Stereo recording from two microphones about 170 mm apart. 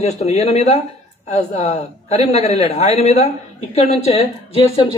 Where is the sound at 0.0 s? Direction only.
40° left (ahead or behind).